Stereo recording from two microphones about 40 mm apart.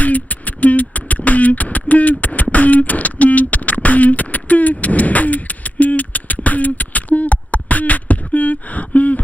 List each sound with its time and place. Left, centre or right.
0.0 s beatboxing: left